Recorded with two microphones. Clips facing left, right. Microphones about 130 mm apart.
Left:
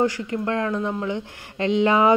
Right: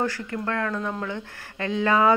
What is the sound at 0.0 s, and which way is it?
A woman's voice, 15° left (ahead or behind).